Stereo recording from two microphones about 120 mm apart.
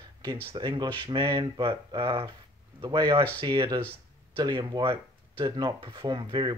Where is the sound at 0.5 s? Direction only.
40° right (ahead or behind).